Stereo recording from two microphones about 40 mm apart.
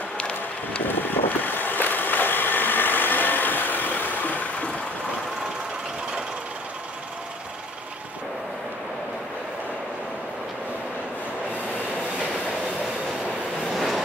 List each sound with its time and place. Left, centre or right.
0.8 s vehicle: left
13.7 s vehicle: centre